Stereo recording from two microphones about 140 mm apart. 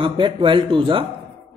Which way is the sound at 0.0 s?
40° right (ahead or behind).